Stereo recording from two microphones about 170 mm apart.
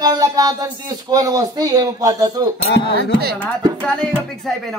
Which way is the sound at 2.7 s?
85° left.